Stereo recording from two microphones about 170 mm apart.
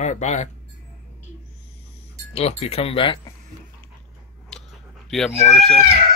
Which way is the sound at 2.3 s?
35° left (ahead or behind).